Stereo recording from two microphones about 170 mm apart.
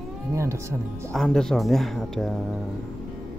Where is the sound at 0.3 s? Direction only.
15° right (ahead or behind).